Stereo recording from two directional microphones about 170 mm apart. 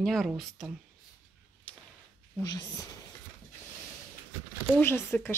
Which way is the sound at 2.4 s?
20° left (ahead or behind).